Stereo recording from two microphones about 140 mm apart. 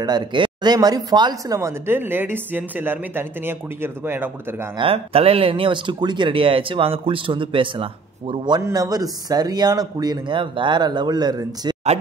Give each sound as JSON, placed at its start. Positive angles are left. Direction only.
{"t": 0.0, "sound": "speech", "side_deg": -30}
{"t": 4.7, "sound": "speech", "side_deg": -45}
{"t": 8.5, "sound": "a man's voice", "side_deg": -25}